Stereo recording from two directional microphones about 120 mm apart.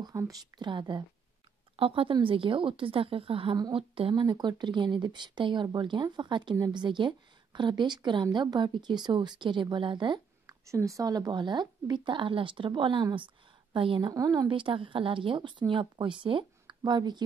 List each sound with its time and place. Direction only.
0.0 s speech: 30° right (ahead or behind)
10.6 s speech: 25° right (ahead or behind); by 14.1 s 45° right (ahead or behind)
14.1 s a woman's voice: 30° right (ahead or behind)
14.5 s speech: 45° right (ahead or behind)